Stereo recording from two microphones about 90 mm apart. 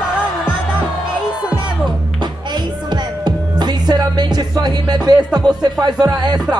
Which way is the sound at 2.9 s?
50° right (ahead or behind).